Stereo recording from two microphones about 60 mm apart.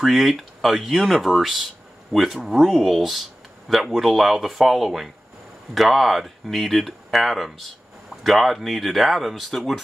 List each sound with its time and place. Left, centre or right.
0.0 s speech: centre